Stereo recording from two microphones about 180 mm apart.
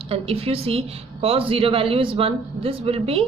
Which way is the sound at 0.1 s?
30° right (ahead or behind).